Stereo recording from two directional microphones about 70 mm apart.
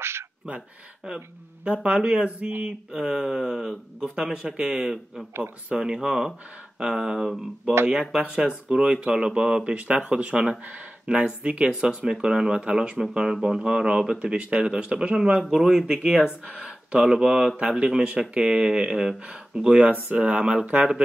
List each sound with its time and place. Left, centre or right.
0.5 s speech: centre